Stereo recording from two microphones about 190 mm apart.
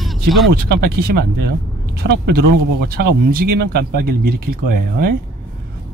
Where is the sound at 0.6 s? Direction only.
55° right (ahead or behind).